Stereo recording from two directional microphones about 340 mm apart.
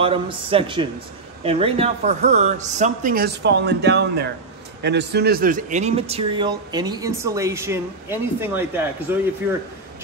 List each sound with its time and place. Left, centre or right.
0.0 s speech: centre